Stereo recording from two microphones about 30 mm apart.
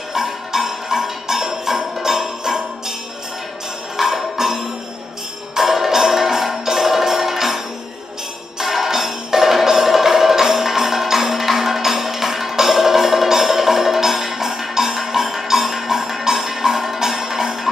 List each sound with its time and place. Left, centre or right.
0.1 s music: centre
3.9 s music: centre